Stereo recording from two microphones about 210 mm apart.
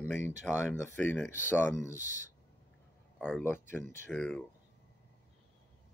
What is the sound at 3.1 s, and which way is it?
Speech, 5° left (ahead or behind).